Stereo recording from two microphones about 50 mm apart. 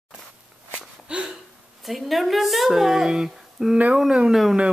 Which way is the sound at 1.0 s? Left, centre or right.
Centre.